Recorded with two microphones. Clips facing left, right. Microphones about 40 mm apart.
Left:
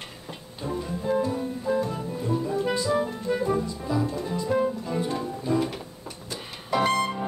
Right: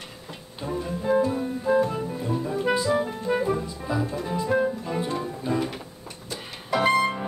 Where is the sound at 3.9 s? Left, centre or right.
Centre.